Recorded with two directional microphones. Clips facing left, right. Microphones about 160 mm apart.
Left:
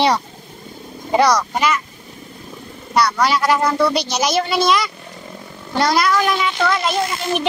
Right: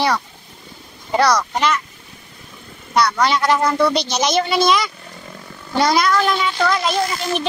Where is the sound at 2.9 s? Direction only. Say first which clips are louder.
Even; 5° left (ahead or behind).